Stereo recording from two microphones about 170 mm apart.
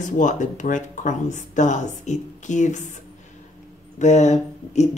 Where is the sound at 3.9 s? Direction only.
45° left (ahead or behind).